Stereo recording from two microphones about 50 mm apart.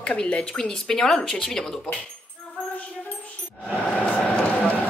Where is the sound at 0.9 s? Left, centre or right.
Centre.